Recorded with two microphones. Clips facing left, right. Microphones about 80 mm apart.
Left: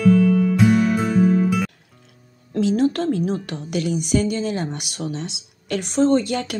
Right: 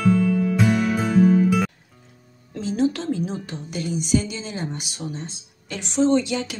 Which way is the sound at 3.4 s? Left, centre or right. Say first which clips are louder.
Left 5 dB; left.